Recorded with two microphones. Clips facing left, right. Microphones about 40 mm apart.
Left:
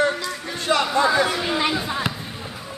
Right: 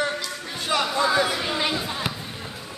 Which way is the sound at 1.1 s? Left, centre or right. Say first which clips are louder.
Left 2 dB; centre.